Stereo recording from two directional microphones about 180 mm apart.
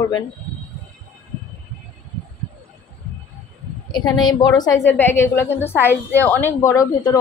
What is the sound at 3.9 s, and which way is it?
A woman's voice, 25° left (ahead or behind).